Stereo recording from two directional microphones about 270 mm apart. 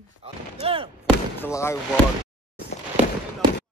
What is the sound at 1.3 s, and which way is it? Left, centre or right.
Basketball bounce, centre.